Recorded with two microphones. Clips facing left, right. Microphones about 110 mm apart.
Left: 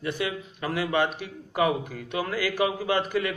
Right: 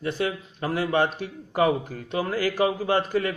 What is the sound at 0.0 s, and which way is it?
Speech, 35° right (ahead or behind).